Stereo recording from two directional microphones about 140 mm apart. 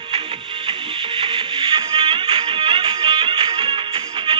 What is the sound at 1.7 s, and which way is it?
Music, 40° right (ahead or behind).